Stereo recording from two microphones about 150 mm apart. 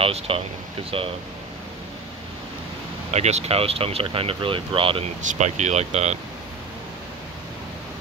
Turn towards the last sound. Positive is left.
turn(degrees=-45)  # may be behind; listen again after turning